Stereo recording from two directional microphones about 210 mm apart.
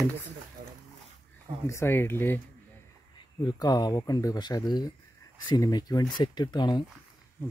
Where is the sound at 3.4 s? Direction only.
20° left (ahead or behind).